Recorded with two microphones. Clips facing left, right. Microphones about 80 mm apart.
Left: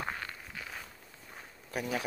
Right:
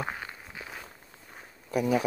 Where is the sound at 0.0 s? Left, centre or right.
Centre.